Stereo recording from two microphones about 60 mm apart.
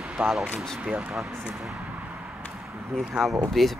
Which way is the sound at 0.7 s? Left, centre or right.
Right.